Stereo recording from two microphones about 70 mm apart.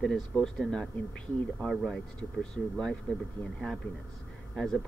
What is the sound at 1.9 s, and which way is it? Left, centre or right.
Speech, centre.